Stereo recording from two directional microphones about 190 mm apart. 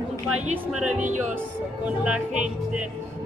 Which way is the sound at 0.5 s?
40° right (ahead or behind).